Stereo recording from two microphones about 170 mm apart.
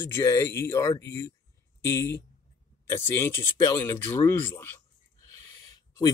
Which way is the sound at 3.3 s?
15° left (ahead or behind).